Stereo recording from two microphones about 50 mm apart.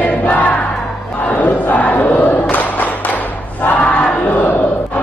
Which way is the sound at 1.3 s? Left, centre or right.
Left.